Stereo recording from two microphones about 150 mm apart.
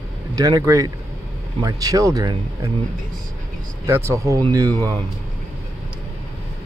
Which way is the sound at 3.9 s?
20° right (ahead or behind).